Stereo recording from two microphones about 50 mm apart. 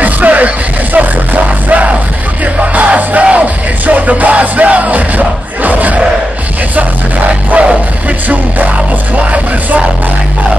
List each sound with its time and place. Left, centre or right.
0.0 s music: right
9.1 s music: right